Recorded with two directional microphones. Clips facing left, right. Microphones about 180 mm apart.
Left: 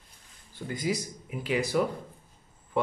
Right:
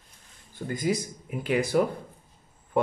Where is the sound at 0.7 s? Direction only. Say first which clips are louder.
Right 3 dB; 50° right (ahead or behind).